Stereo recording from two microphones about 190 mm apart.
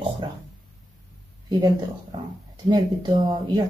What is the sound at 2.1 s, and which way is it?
Speech, 20° right (ahead or behind).